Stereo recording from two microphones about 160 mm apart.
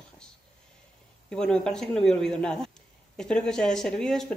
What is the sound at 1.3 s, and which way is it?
Speech, 5° left (ahead or behind).